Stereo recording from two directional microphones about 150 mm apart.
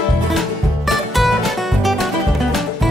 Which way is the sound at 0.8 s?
Centre (ahead or behind).